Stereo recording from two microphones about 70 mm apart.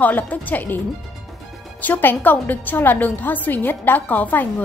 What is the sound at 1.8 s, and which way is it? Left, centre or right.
A woman's voice, left.